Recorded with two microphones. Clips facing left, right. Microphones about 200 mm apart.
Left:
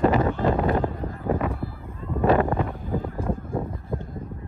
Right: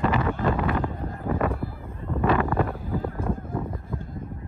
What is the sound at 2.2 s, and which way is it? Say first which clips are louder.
Wind noise: left 3 dB; 30° left (ahead or behind).